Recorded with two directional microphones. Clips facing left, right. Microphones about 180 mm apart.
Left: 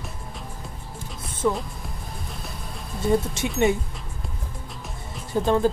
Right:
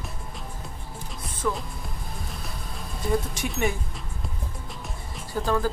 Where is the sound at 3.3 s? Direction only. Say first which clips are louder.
Left 5 dB; 25° left (ahead or behind).